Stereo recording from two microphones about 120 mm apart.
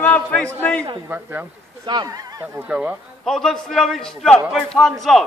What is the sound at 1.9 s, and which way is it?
Speech, 35° right (ahead or behind).